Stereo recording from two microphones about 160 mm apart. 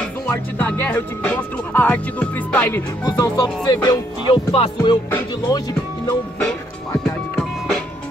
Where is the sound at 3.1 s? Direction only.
20° left (ahead or behind).